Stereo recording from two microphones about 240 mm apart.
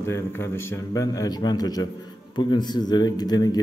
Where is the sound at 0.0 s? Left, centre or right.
Centre.